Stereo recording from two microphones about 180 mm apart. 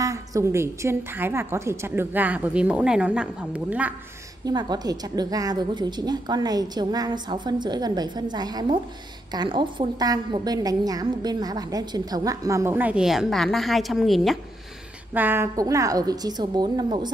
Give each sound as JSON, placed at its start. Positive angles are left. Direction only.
{"t": 0.0, "sound": "a woman's voice", "side_deg": -20}
{"t": 4.5, "sound": "a woman's voice", "side_deg": -20}
{"t": 15.1, "sound": "a woman's voice", "side_deg": -10}